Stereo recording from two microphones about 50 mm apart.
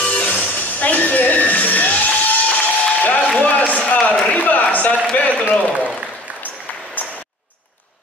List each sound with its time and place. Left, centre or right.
0.0 s music: left
4.4 s a man's voice: left